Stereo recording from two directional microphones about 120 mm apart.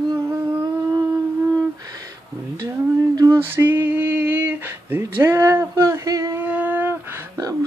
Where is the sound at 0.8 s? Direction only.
20° right (ahead or behind).